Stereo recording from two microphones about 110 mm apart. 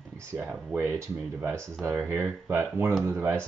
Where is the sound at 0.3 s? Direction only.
10° right (ahead or behind).